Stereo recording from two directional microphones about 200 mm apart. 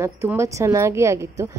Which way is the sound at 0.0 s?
15° right (ahead or behind).